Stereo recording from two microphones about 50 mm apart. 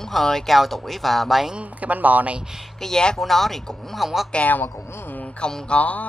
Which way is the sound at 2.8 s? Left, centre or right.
Centre.